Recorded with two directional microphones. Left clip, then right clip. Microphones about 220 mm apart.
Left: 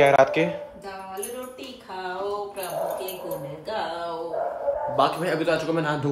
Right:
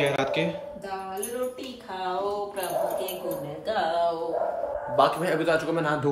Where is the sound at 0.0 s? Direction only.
5° right (ahead or behind).